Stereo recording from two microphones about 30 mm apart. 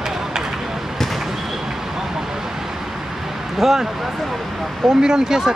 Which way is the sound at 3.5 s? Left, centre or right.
Centre.